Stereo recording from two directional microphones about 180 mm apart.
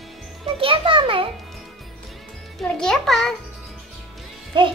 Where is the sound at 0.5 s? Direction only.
30° right (ahead or behind).